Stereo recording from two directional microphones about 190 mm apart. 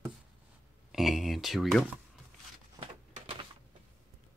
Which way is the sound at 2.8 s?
30° right (ahead or behind).